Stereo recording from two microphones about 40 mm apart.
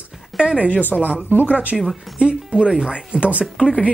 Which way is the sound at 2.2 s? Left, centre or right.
Right.